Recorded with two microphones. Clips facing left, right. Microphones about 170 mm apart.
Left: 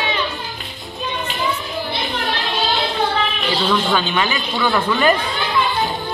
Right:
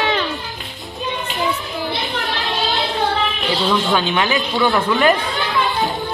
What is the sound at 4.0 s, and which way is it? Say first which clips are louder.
Speech: right 2 dB; 15° right (ahead or behind).